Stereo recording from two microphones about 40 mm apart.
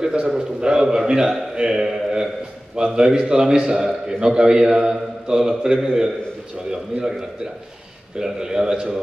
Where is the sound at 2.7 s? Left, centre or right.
Centre.